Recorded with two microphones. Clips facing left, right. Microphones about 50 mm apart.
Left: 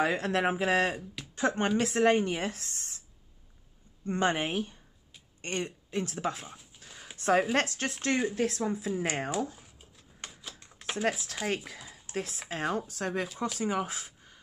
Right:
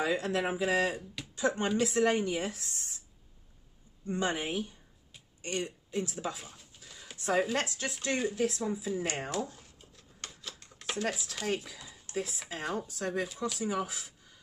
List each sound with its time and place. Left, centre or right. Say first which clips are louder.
0.0 s speech: left 3 dB; left
4.0 s speech: left 4 dB; left
6.8 s a sound: left 1 dB; left
7.5 s speech: left 4 dB; left
9.3 s a sound: left 3 dB; centre
11.1 s speech: left 4 dB; left